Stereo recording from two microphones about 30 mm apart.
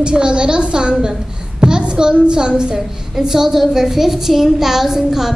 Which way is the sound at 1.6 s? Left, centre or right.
Right.